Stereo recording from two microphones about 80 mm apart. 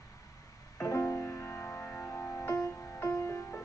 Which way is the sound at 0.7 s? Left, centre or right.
Left.